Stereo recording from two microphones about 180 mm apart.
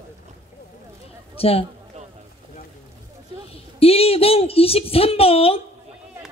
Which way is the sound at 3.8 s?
35° left (ahead or behind).